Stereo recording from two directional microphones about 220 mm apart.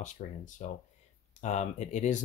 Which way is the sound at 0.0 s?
35° left (ahead or behind).